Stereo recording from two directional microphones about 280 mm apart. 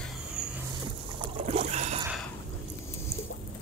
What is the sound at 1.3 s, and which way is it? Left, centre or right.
Boat, right.